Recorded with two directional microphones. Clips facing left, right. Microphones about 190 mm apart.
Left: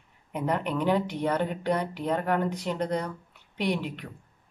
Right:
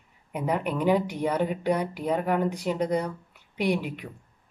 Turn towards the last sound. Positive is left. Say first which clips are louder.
# right 2 dB
turn(degrees=-10)  # may be behind; listen again after turning